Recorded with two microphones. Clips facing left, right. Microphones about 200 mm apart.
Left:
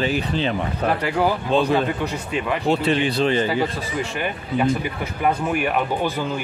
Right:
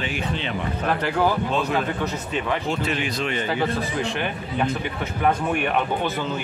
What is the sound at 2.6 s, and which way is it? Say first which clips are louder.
Speech: left 6 dB; 35° left (ahead or behind).